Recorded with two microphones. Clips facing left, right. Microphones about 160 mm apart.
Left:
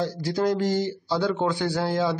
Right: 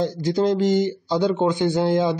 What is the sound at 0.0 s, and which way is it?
Speech, 20° right (ahead or behind).